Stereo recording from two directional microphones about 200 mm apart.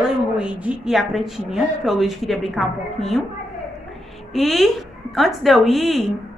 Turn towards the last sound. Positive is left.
turn(degrees=0)  # may be behind; listen again after turning